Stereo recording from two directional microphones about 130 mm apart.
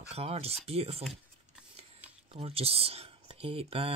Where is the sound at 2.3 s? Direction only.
50° right (ahead or behind).